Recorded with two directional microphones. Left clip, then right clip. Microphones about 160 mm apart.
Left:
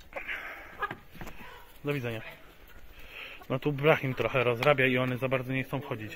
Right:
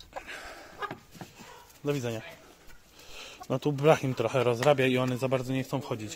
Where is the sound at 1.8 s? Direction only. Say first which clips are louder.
Right 2 dB; 75° right (ahead or behind).